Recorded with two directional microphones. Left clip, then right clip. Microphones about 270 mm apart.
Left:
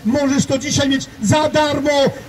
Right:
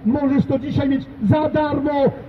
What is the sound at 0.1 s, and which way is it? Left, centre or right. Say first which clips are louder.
A man's voice: left 3 dB; left.